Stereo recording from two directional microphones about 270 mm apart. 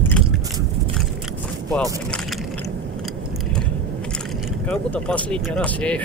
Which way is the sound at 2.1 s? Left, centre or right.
Centre.